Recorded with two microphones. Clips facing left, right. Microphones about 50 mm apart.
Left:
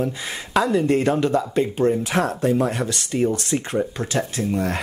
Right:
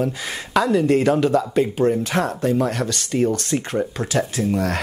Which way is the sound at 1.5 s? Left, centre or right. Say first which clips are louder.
Right 1 dB; centre.